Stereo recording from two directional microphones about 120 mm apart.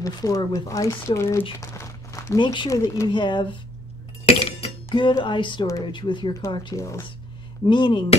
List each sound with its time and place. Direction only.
0.0 s speech: 30° left (ahead or behind)
1.6 s crumpling: 25° left (ahead or behind)
2.3 s music: 40° left (ahead or behind)
2.7 s speech: 25° left (ahead or behind)
3.1 s music: 40° left (ahead or behind)
4.3 s chink: 60° left (ahead or behind)
4.9 s music: 40° left (ahead or behind)
6.8 s speech: 25° left (ahead or behind)
7.6 s speech: 40° left (ahead or behind)